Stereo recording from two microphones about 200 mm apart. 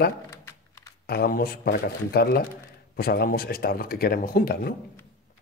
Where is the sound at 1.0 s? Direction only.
50° left (ahead or behind).